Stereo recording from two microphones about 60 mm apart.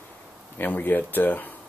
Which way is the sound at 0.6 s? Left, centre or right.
Left.